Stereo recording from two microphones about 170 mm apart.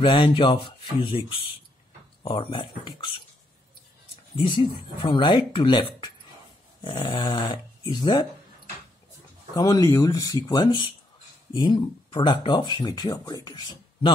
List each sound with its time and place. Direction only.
0.0 s speech: 30° left (ahead or behind)
4.5 s speech: 30° left (ahead or behind)
9.6 s speech: 20° left (ahead or behind)